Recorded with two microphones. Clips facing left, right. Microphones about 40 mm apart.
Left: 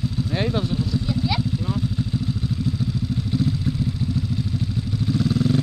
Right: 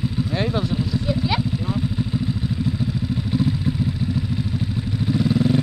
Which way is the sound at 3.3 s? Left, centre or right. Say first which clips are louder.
Right 2 dB; centre.